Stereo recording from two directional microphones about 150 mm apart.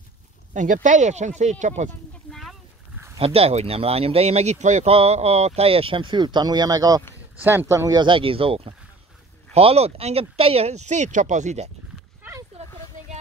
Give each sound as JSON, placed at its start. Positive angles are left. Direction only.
{"t": 0.5, "sound": "speech", "side_deg": -55}
{"t": 3.2, "sound": "speech", "side_deg": -40}
{"t": 12.2, "sound": "a sound", "side_deg": -15}